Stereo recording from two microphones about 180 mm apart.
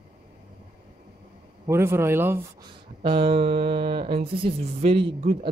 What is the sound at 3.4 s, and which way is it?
Music, 65° right (ahead or behind).